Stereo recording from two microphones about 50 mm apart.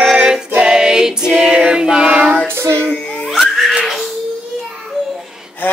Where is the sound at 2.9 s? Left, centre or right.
Left.